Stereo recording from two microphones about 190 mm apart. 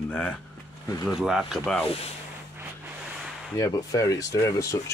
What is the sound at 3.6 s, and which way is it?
Speech, 15° left (ahead or behind).